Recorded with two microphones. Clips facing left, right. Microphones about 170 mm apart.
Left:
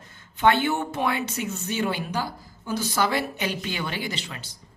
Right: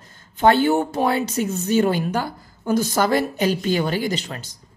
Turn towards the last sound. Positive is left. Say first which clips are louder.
# right 8 dB
turn(degrees=-45)  # may be behind; listen again after turning